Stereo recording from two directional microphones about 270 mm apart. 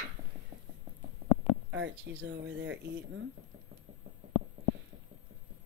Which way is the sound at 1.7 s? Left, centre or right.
Right.